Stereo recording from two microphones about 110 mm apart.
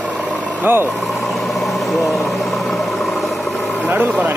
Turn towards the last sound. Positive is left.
turn(degrees=-15)  # may be behind; listen again after turning